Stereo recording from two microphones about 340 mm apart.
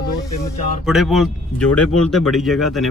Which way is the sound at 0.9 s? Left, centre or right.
Centre.